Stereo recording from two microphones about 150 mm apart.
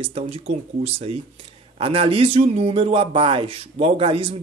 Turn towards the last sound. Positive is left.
turn(degrees=-40)  # may be behind; listen again after turning